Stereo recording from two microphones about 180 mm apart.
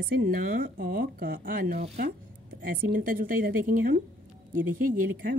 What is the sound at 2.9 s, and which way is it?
Speech, 50° right (ahead or behind).